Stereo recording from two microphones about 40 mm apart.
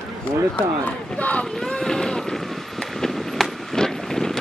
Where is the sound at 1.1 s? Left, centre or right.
Left.